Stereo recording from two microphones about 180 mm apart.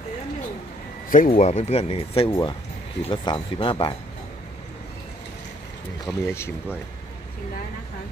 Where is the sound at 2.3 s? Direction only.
25° left (ahead or behind).